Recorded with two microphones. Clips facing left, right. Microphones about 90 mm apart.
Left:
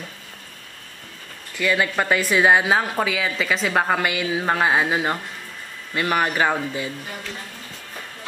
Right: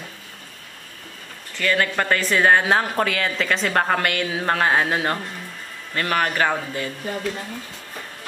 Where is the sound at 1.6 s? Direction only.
10° left (ahead or behind).